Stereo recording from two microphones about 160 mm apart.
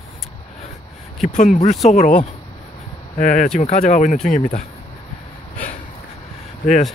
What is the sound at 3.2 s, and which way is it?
Speech, 55° left (ahead or behind).